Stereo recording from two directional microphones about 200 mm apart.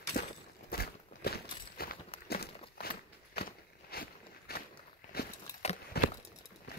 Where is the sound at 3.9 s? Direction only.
50° left (ahead or behind).